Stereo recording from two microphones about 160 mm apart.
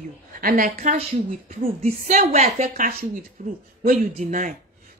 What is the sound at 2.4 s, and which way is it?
Speech, 50° right (ahead or behind).